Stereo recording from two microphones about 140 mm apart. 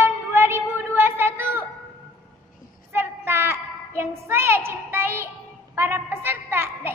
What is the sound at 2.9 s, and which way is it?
Child singing, 15° right (ahead or behind).